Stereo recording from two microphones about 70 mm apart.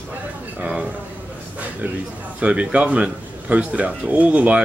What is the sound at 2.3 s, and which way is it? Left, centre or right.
A man's voice, centre.